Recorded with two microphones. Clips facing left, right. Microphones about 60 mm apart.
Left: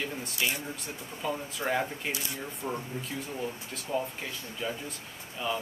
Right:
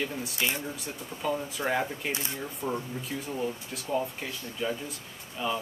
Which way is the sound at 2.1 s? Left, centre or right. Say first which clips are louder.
Right 2 dB; right.